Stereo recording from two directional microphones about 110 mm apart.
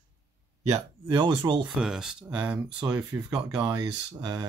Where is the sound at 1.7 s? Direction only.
5° right (ahead or behind).